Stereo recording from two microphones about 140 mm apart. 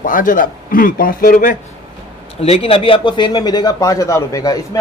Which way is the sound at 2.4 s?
45° left (ahead or behind).